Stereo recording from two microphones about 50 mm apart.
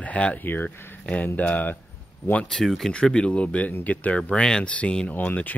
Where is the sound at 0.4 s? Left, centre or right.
Left.